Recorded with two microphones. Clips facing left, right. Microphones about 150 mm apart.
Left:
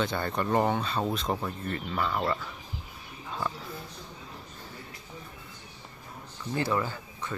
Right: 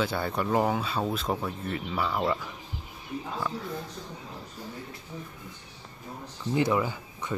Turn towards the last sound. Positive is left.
turn(degrees=-15)  # may be behind; listen again after turning